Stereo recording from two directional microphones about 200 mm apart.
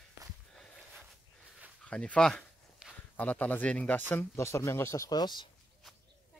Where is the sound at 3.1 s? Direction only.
10° left (ahead or behind).